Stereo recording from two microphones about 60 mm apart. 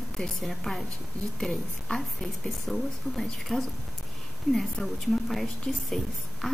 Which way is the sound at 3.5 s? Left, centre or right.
Centre.